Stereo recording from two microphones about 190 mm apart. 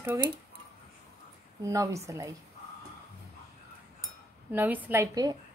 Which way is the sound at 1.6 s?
15° right (ahead or behind).